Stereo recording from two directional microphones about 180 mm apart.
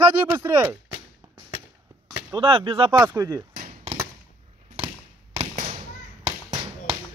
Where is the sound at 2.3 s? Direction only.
25° right (ahead or behind).